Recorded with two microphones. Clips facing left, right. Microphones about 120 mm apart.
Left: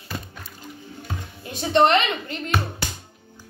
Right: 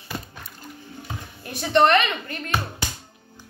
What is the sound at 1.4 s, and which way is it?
Speech, 20° left (ahead or behind).